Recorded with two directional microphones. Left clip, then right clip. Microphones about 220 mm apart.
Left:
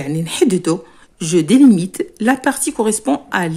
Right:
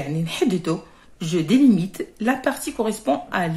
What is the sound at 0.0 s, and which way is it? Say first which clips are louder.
Speech: left 7 dB; 40° left (ahead or behind).